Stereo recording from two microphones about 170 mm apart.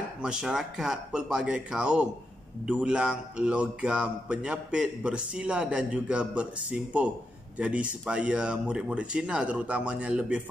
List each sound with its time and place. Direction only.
0.2 s a man's voice: 5° right (ahead or behind)